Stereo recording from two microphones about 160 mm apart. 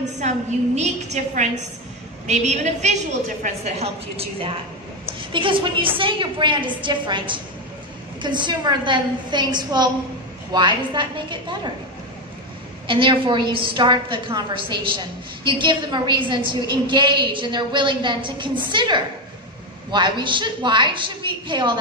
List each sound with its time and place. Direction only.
0.7 s a woman's voice: 45° right (ahead or behind); by 11.7 s 30° right (ahead or behind)
12.8 s a woman's voice: 30° right (ahead or behind)